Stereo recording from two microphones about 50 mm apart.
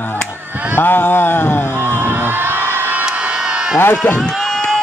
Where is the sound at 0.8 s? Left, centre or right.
Left.